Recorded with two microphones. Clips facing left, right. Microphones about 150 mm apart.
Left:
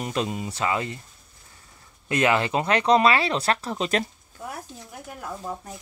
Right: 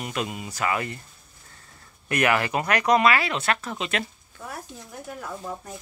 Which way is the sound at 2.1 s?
20° left (ahead or behind).